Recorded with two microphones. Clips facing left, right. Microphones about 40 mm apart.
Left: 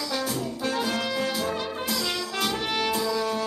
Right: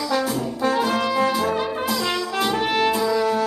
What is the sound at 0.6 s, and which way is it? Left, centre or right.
Brass instrument, centre.